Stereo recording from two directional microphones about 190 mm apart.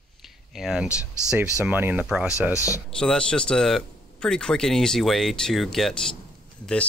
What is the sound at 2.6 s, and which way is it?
Speech, 15° left (ahead or behind).